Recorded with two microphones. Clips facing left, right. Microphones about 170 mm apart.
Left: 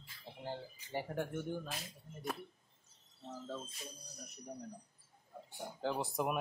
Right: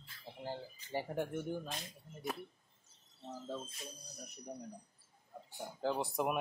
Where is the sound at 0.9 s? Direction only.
10° right (ahead or behind).